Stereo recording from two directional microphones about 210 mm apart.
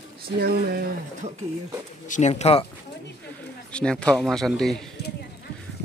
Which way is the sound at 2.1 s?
35° left (ahead or behind).